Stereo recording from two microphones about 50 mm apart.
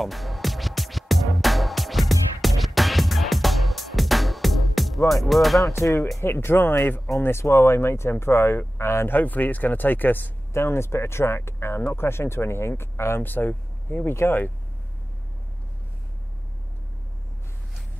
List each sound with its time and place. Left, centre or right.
0.0 s music: centre
5.7 s speech: left
6.2 s speech: left
7.2 s speech: left
9.1 s speech: left
10.5 s speech: left
13.3 s speech: left